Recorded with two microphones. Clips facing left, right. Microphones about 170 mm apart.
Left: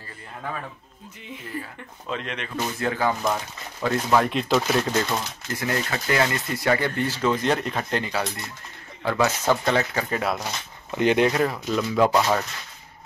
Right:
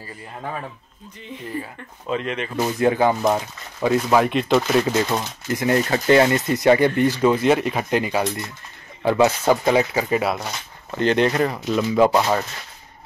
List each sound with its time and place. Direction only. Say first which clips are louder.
2.0 s speech: right 6 dB; 5° right (ahead or behind)
2.8 s speech: right 7 dB; 20° right (ahead or behind)
3.8 s speech: right 4 dB; 10° right (ahead or behind)
4.3 s speech: right 4 dB; centre (ahead or behind)
5.1 s speech: right 5 dB; 20° right (ahead or behind)
5.9 s speech: right 9 dB; 30° right (ahead or behind); by 8.3 s 10° right (ahead or behind)
9.0 s speech: right 5 dB; 25° right (ahead or behind); by 10.5 s 5° right (ahead or behind)
11.0 s speech: right 1 dB; 10° left (ahead or behind); by 12.4 s 15° right (ahead or behind)